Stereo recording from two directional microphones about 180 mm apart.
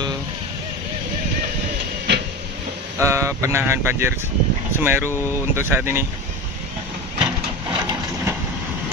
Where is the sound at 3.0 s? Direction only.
15° right (ahead or behind).